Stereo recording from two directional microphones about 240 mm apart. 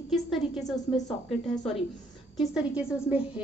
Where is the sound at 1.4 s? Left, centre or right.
Centre.